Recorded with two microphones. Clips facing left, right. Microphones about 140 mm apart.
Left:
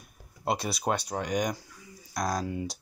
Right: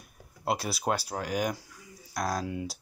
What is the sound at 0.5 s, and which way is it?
Speech, 5° right (ahead or behind).